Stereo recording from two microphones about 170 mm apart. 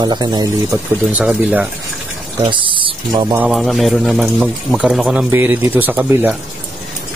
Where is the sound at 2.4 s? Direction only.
30° right (ahead or behind).